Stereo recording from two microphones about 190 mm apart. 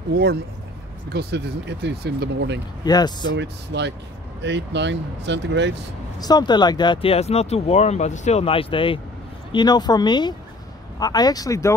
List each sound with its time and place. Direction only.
0.1 s speech: 55° right (ahead or behind)
2.8 s speech: 20° left (ahead or behind)
3.3 s speech: 65° right (ahead or behind)
6.1 s speech: 20° left (ahead or behind)